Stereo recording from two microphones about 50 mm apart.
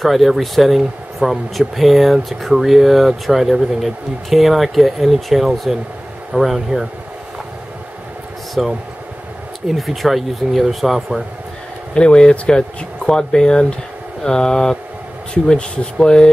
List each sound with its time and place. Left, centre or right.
0.0 s speech: centre
8.6 s speech: centre
11.9 s speech: centre